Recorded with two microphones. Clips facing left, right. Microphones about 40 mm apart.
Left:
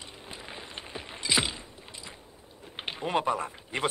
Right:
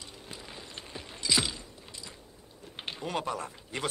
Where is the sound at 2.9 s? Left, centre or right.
Left.